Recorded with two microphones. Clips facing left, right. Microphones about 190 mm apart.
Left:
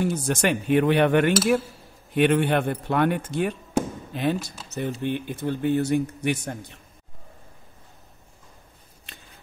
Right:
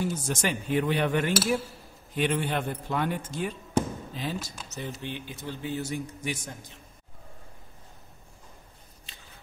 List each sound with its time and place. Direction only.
0.0 s speech: 65° left (ahead or behind)